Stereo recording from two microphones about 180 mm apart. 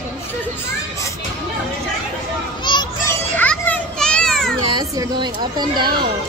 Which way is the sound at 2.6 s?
25° left (ahead or behind).